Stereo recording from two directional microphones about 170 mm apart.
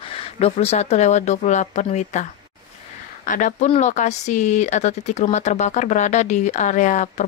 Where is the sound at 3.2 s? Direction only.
50° left (ahead or behind).